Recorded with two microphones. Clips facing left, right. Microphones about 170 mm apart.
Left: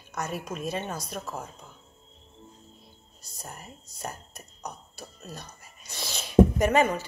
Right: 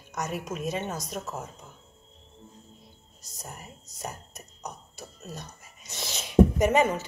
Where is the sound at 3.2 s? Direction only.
20° right (ahead or behind).